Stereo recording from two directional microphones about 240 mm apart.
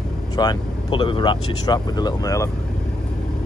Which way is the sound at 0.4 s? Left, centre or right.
Centre.